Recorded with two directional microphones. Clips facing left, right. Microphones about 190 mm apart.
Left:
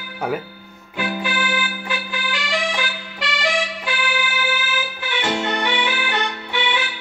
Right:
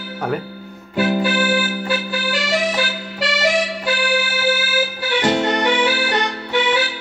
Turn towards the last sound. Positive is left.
turn(degrees=-40)  # may be behind; listen again after turning